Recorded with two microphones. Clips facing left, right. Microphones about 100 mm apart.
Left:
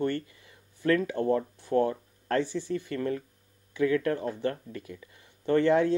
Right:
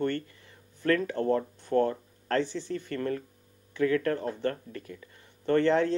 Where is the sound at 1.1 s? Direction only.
20° left (ahead or behind).